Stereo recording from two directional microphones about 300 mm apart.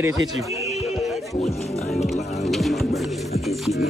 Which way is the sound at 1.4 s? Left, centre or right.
Left.